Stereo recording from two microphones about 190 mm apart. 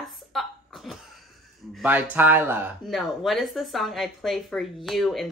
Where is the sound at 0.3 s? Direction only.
Centre (ahead or behind).